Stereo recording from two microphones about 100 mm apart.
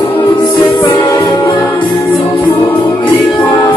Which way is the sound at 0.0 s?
45° left (ahead or behind).